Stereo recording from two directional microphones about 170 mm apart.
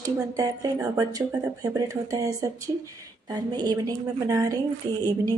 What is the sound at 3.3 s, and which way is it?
Speech, 25° right (ahead or behind).